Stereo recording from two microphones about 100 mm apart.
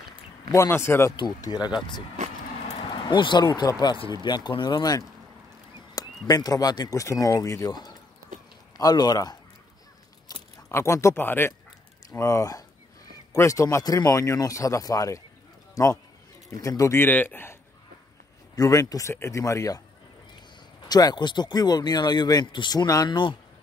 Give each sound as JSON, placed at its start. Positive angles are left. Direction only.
{"t": 0.5, "sound": "speech", "side_deg": 30}
{"t": 1.1, "sound": "speech", "side_deg": 45}
{"t": 2.8, "sound": "a man's voice", "side_deg": 50}
{"t": 8.7, "sound": "a man's voice", "side_deg": 40}
{"t": 10.7, "sound": "speech", "side_deg": 30}
{"t": 12.1, "sound": "a man's voice", "side_deg": 30}
{"t": 17.0, "sound": "speech", "side_deg": 20}
{"t": 18.6, "sound": "a man's voice", "side_deg": 35}
{"t": 20.9, "sound": "speech", "side_deg": 45}